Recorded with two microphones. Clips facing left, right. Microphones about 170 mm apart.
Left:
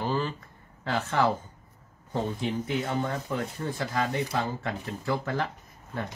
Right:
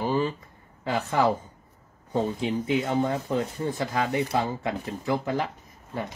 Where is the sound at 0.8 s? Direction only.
15° right (ahead or behind).